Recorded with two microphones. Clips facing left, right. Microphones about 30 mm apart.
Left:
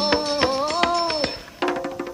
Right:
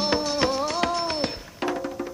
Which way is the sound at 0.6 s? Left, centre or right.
Left.